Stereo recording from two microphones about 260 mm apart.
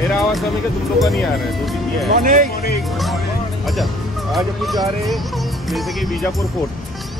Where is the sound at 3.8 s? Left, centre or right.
Centre.